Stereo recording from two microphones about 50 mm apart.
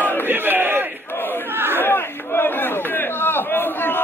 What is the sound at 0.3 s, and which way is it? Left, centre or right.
Battle cry, right.